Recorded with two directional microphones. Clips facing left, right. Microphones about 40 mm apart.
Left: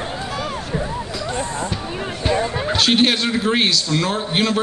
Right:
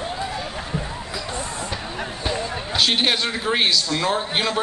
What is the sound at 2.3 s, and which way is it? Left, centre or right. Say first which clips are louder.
Music: left 7 dB; left.